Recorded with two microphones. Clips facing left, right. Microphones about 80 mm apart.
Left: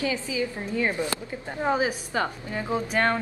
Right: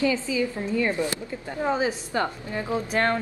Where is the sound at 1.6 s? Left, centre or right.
Centre.